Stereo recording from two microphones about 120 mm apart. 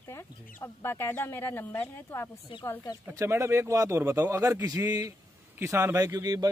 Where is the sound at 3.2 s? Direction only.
25° right (ahead or behind).